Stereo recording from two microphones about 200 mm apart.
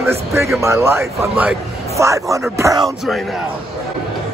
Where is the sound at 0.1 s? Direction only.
15° right (ahead or behind).